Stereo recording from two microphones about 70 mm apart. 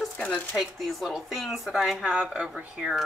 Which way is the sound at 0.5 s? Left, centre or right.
Centre.